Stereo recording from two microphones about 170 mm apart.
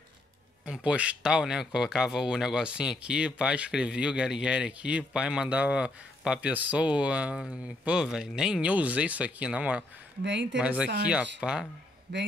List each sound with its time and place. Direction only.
0.7 s speech: 5° right (ahead or behind)
10.2 s speech: 90° right
10.6 s speech: 5° right (ahead or behind)